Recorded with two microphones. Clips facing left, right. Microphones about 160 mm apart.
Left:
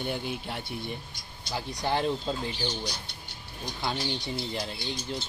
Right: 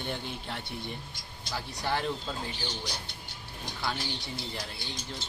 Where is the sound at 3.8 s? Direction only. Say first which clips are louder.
Left 3 dB; 20° left (ahead or behind).